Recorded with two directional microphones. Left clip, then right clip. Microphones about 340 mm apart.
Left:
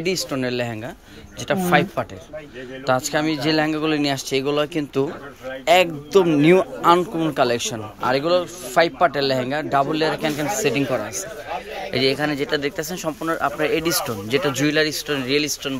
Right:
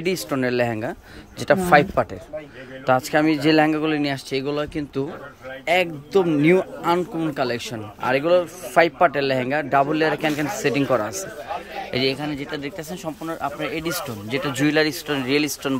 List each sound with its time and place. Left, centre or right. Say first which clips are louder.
0.0 s speech: even; centre